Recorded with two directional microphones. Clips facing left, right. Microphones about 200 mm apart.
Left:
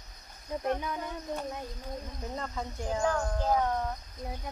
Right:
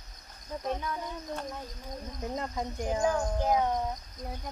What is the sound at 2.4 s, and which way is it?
Speech, 15° right (ahead or behind).